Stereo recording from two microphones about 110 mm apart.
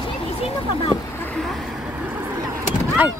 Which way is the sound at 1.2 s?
5° left (ahead or behind).